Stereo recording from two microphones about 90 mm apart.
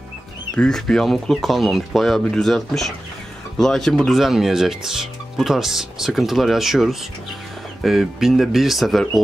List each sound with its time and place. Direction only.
0.6 s speech: 5° left (ahead or behind)